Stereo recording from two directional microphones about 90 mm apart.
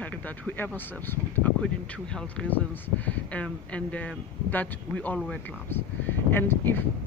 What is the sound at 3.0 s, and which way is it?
Speech, 15° left (ahead or behind).